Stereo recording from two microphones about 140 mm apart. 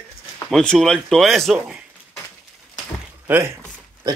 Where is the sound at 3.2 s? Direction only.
15° right (ahead or behind).